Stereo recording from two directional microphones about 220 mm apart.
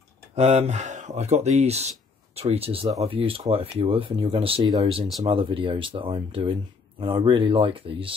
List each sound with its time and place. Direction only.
0.4 s speech: 30° right (ahead or behind)